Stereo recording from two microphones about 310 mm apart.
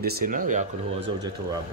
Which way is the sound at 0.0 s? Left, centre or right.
Right.